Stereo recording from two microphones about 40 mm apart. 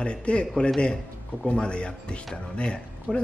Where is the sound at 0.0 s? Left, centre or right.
Left.